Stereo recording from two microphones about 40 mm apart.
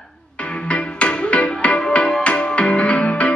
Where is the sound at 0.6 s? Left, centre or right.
Left.